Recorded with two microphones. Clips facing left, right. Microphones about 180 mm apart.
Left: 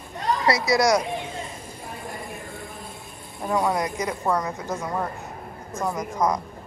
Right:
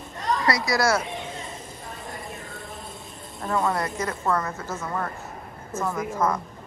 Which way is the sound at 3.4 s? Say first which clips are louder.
Left 2 dB; 10° left (ahead or behind).